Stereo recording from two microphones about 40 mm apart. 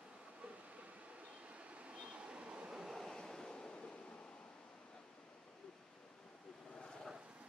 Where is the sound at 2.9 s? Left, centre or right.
Centre.